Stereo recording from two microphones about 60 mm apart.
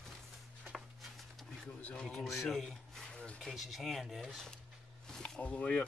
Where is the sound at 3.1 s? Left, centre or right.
Centre.